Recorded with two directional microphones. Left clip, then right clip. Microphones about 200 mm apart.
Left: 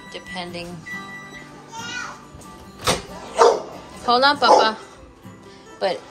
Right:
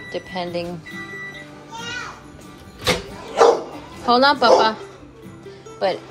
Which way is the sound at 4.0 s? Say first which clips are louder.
Right 1 dB; 15° left (ahead or behind).